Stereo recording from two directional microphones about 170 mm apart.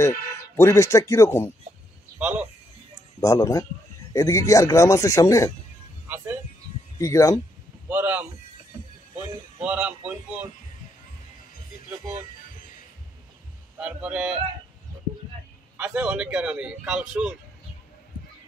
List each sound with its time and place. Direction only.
0.0 s speech: 15° left (ahead or behind)
2.1 s speech: 10° right (ahead or behind)
3.2 s a man's voice: 20° left (ahead or behind)
6.0 s a sound: 10° right (ahead or behind)
7.0 s a man's voice: 20° left (ahead or behind)
7.9 s a man's voice: 10° right (ahead or behind)
9.6 s a man's voice: 5° right (ahead or behind)
13.7 s speech: 5° right (ahead or behind)
15.8 s speech: 5° right (ahead or behind)